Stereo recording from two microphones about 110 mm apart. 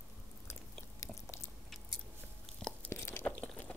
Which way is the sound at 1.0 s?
25° left (ahead or behind).